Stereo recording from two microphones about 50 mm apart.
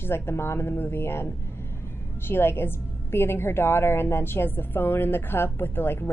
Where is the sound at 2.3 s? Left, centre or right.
Left.